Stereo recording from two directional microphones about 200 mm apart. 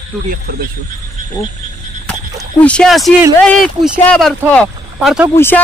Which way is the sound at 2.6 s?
5° left (ahead or behind).